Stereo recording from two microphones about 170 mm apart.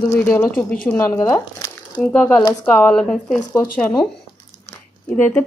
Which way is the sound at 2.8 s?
5° left (ahead or behind).